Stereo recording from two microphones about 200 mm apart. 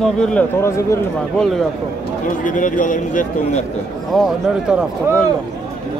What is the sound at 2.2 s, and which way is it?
Speech, 40° left (ahead or behind).